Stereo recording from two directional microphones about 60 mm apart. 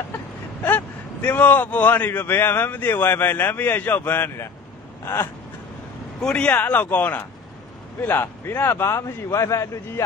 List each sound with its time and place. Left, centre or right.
0.7 s a man's voice: left
6.3 s speech: left
8.0 s a man's voice: left